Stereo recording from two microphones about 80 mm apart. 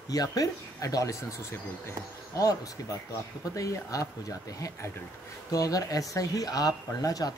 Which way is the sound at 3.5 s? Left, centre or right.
Left.